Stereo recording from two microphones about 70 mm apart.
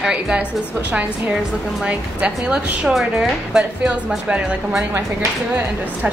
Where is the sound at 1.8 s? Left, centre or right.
Centre.